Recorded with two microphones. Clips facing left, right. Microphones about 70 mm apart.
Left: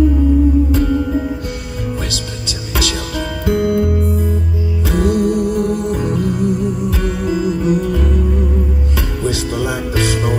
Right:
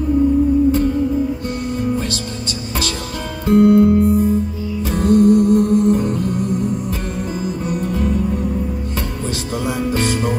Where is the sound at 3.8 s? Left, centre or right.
Right.